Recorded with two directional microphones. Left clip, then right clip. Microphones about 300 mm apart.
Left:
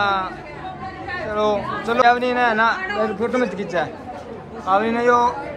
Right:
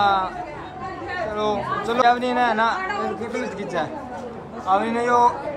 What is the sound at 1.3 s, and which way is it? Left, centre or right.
A woman's voice, centre.